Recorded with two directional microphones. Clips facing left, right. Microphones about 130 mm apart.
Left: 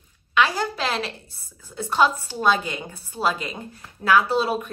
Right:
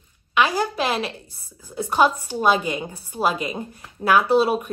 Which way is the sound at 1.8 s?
15° right (ahead or behind).